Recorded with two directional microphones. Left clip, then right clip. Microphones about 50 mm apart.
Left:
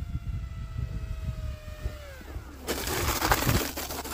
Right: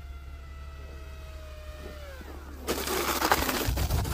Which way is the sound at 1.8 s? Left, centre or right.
Right.